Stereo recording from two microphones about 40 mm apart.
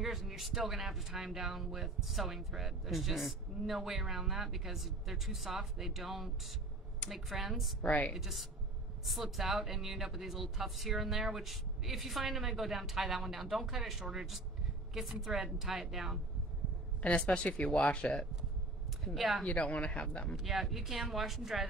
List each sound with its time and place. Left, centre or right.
0.0 s speech: centre
7.8 s a woman's voice: left
8.1 s speech: centre
17.0 s speech: left
19.1 s speech: centre
19.4 s a woman's voice: left
20.4 s speech: centre